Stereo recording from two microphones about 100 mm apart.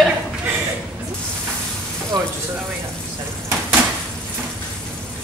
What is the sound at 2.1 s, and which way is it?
Speech, 40° right (ahead or behind).